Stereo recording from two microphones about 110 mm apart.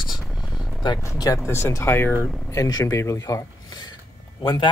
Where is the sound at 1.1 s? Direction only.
30° left (ahead or behind).